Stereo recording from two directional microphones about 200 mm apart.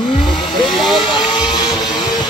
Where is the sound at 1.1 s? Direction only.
20° left (ahead or behind).